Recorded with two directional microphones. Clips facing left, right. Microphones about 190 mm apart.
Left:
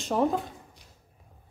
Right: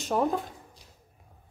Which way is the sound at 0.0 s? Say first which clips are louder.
Left 1 dB; centre (ahead or behind).